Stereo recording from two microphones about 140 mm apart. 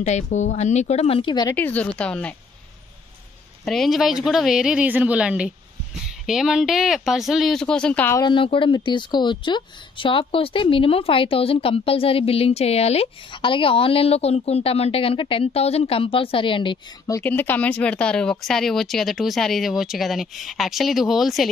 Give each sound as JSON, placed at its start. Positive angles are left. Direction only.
{"t": 0.0, "sound": "speech", "side_deg": 55}
{"t": 1.5, "sound": "a woman's voice", "side_deg": 10}
{"t": 3.6, "sound": "speech", "side_deg": 0}
{"t": 8.2, "sound": "speech", "side_deg": 35}
{"t": 17.1, "sound": "speech", "side_deg": 15}